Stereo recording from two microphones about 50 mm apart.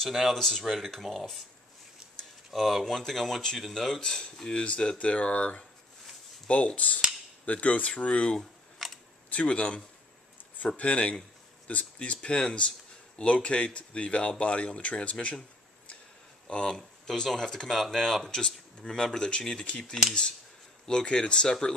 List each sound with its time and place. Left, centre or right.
0.1 s speech: centre
2.5 s speech: centre
8.7 s camera: centre
9.3 s speech: left
10.8 s speech: left
16.4 s speech: centre
19.8 s speech: centre
20.8 s speech: centre